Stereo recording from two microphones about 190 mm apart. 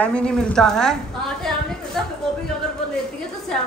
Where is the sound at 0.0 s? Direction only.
5° left (ahead or behind).